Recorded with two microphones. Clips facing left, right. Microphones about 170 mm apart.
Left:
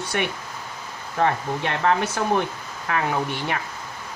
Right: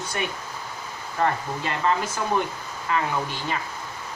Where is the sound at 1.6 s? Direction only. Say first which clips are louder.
Left 2 dB; 70° left (ahead or behind).